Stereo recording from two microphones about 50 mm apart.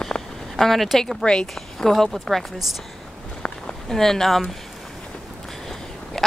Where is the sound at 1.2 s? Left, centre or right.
Centre.